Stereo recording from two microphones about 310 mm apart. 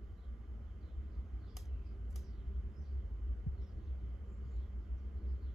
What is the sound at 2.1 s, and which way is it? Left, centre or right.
Vehicle, centre.